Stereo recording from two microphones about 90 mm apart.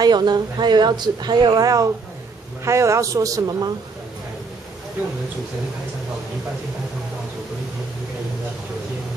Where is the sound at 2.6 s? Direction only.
35° right (ahead or behind).